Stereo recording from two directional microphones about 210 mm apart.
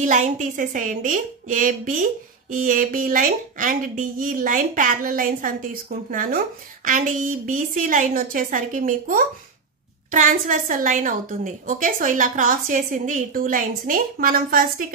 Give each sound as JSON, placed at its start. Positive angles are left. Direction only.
{"t": 0.0, "sound": "a woman's voice", "side_deg": -35}